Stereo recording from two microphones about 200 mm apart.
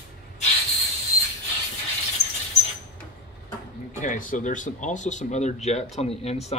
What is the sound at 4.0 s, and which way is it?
Speech, 40° left (ahead or behind).